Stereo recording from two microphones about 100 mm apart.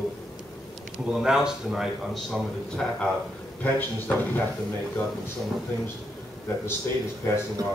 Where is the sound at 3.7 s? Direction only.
20° left (ahead or behind).